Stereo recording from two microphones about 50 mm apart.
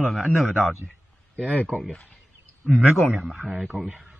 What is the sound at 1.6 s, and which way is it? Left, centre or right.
Speech, centre.